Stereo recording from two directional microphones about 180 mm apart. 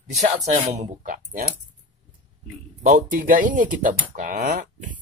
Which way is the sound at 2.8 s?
50° right (ahead or behind).